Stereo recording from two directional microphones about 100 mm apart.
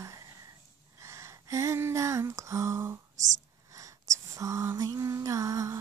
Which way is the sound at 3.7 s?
35° right (ahead or behind).